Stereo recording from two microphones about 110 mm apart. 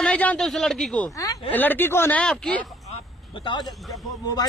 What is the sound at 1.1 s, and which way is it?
Speech, 30° left (ahead or behind).